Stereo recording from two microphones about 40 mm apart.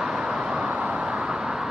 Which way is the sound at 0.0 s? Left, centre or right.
Centre.